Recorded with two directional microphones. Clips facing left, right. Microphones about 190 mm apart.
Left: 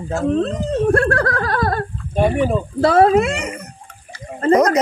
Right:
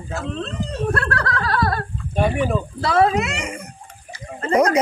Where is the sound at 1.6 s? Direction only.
25° left (ahead or behind).